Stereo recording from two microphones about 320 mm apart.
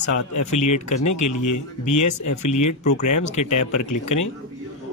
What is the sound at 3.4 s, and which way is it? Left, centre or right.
Speech, left.